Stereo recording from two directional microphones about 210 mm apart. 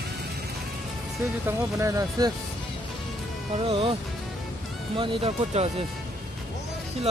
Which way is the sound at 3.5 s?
30° right (ahead or behind).